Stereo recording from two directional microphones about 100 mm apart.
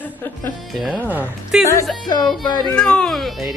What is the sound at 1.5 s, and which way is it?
Speech, 5° right (ahead or behind).